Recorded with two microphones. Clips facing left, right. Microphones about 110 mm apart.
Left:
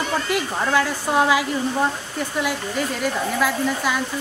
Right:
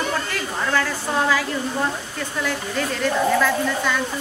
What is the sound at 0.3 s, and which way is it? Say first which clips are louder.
A man's voice: left 3 dB; 15° left (ahead or behind).